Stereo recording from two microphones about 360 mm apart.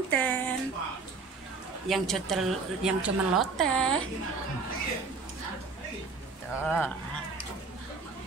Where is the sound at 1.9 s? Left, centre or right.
Centre.